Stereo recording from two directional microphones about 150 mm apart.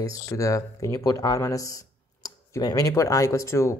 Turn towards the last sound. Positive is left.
turn(degrees=20)  # may be behind; listen again after turning